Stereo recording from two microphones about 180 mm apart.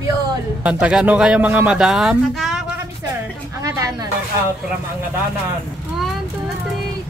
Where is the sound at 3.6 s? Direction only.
20° right (ahead or behind).